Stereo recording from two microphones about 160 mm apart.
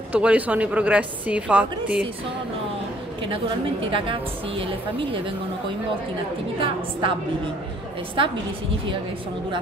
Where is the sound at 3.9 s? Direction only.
35° right (ahead or behind).